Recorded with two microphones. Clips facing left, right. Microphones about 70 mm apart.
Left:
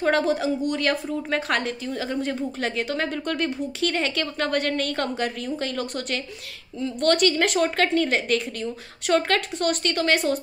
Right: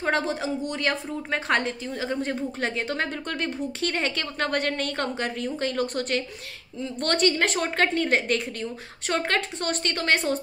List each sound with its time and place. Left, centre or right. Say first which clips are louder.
0.0 s speech: left 4 dB; right